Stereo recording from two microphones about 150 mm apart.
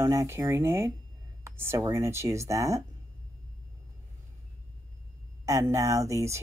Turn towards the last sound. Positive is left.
turn(degrees=-20)  # may be behind; listen again after turning